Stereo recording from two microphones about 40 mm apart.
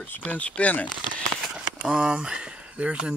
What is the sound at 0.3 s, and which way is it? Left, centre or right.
Speech, left.